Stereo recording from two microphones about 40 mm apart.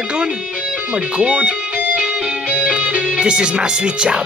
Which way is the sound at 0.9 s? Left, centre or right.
Right.